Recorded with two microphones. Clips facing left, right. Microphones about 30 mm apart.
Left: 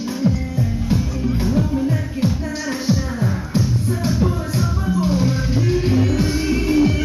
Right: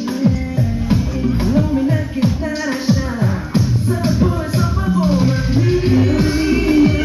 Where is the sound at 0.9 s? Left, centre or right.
Centre.